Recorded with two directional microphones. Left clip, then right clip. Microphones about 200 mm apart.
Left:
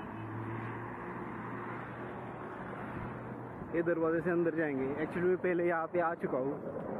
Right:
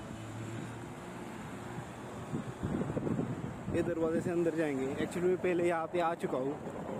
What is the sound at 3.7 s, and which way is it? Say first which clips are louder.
Speech: left 1 dB; 15° right (ahead or behind).